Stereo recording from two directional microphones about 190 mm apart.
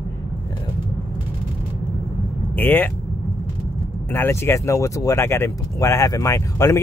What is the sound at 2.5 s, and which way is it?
Speech, 10° left (ahead or behind).